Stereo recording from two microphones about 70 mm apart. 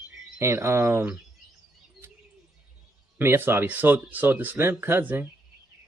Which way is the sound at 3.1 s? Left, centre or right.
Right.